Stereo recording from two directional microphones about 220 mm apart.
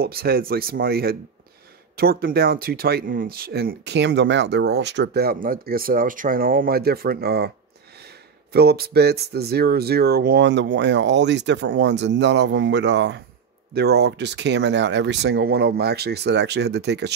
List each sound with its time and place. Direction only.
0.0 s speech: 45° right (ahead or behind)
8.5 s speech: 45° right (ahead or behind)